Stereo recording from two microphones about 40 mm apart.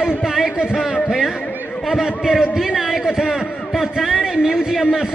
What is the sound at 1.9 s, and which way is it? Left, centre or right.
A man's voice, centre.